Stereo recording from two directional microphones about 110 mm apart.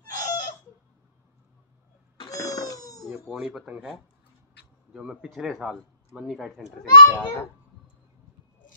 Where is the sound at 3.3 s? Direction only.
5° right (ahead or behind).